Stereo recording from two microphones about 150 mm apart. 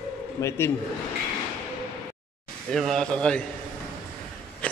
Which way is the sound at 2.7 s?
5° left (ahead or behind).